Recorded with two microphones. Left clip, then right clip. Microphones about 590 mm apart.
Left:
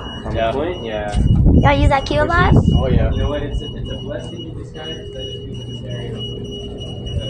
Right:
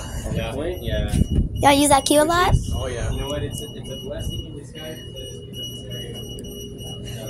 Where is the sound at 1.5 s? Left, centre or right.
Right.